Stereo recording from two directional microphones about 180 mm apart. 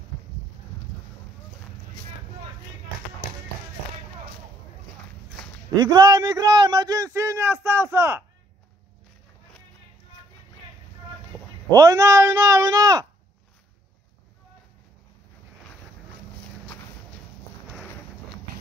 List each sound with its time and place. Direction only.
5.8 s a man's voice: 20° right (ahead or behind)
11.7 s a man's voice: 20° right (ahead or behind)
17.6 s a sound: centre (ahead or behind)